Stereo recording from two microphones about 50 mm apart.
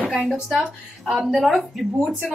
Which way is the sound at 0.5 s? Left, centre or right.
Centre.